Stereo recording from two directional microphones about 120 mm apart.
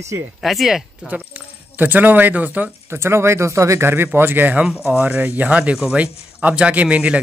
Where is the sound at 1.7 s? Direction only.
15° right (ahead or behind).